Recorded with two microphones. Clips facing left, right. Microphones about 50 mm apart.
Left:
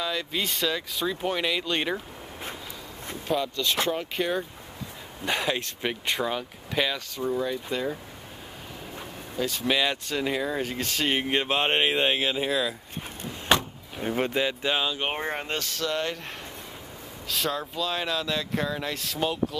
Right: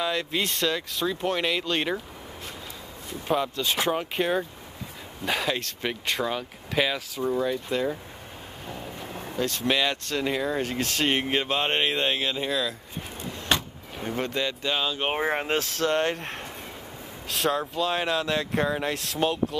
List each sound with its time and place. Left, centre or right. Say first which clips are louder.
0.0 s speech: right 2 dB; centre
3.3 s speech: right 1 dB; centre
5.2 s speech: even; centre
9.4 s speech: even; centre
11.4 s speech: left 1 dB; centre
14.0 s speech: left 2 dB; centre
14.9 s speech: right 3 dB; centre
15.8 s speech: right 4 dB; right
17.5 s speech: right 5 dB; centre